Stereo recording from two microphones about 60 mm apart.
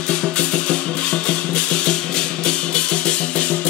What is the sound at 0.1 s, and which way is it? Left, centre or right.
Music, centre.